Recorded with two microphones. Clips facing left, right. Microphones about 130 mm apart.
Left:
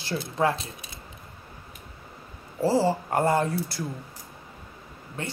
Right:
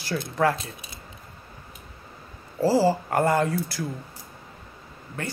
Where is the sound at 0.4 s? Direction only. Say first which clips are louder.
Right 2 dB; 20° left (ahead or behind).